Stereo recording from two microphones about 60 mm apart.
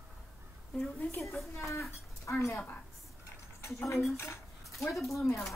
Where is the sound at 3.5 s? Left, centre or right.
Left.